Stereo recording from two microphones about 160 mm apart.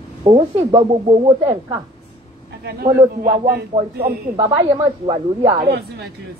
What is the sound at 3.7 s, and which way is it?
Speech, 45° right (ahead or behind).